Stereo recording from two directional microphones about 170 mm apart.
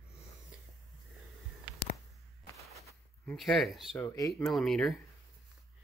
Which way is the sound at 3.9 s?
15° left (ahead or behind).